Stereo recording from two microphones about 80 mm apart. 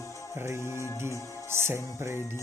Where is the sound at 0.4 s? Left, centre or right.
Right.